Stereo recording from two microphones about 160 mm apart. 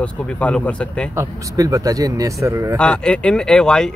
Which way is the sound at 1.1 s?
20° right (ahead or behind).